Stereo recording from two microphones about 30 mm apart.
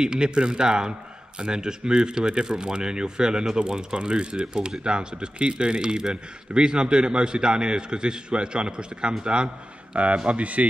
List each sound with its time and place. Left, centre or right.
0.0 s speech: right
9.9 s speech: right